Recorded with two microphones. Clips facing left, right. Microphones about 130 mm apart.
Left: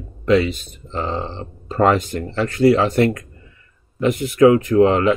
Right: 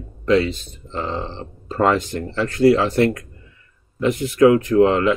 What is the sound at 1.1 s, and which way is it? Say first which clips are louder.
Speech: left 1 dB; 45° left (ahead or behind).